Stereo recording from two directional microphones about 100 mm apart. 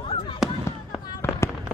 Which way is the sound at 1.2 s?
25° left (ahead or behind).